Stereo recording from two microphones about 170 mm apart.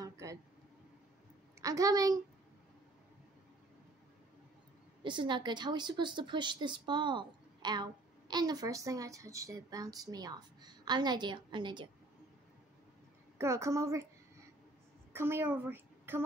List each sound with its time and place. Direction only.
0.0 s a sound: 20° right (ahead or behind)
1.6 s a woman's voice: 20° right (ahead or behind)
5.0 s a woman's voice: 25° right (ahead or behind)
13.4 s a woman's voice: 15° right (ahead or behind)
15.1 s a child's voice: 15° right (ahead or behind)